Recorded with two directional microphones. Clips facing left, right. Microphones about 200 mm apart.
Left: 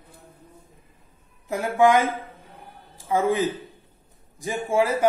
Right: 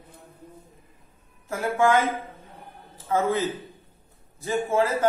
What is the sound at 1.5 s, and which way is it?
Speech, 15° left (ahead or behind).